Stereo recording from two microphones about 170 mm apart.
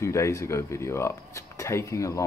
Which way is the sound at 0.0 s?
15° left (ahead or behind).